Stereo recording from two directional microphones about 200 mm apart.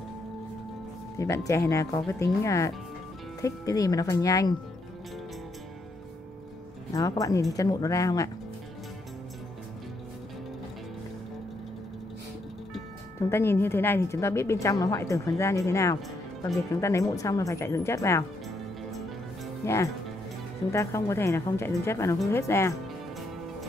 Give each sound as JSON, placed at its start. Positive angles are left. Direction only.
{"t": 1.1, "sound": "a woman's voice", "side_deg": 15}
{"t": 6.9, "sound": "a woman's voice", "side_deg": 15}
{"t": 13.2, "sound": "a woman's voice", "side_deg": 10}
{"t": 19.6, "sound": "a woman's voice", "side_deg": 15}